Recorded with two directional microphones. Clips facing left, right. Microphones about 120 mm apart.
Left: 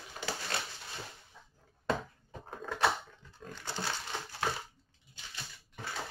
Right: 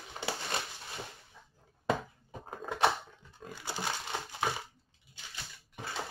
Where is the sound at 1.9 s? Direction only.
10° right (ahead or behind).